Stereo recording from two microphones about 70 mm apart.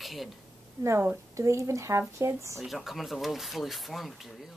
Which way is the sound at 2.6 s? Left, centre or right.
Centre.